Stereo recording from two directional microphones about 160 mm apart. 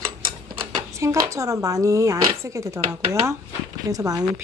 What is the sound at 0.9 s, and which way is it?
Speech, 20° right (ahead or behind).